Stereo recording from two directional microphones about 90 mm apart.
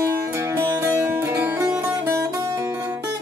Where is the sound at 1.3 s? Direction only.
15° right (ahead or behind).